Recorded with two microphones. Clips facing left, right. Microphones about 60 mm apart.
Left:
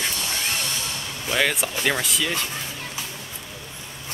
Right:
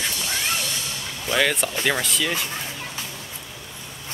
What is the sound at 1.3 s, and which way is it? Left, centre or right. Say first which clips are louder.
Speech: right 1 dB; centre.